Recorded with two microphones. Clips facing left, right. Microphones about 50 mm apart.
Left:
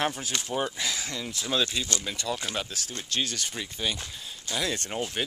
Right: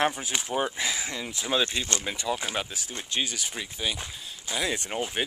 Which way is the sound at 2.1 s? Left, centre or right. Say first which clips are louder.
Right 3 dB; centre.